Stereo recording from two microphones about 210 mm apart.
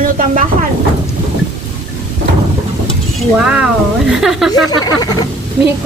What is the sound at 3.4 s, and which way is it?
Speech, 5° right (ahead or behind).